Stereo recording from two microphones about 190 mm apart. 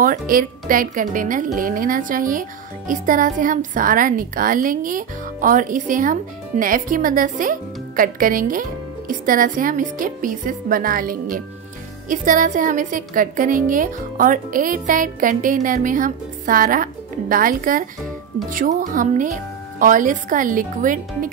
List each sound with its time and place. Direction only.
0.0 s speech: 50° right (ahead or behind)